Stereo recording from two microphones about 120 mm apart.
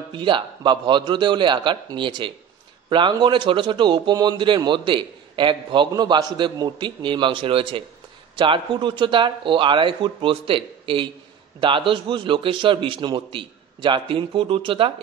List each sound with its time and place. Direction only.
0.1 s a man's voice: 45° right (ahead or behind)